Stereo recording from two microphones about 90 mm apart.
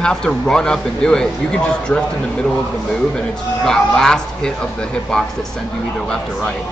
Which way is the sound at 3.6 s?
5° left (ahead or behind).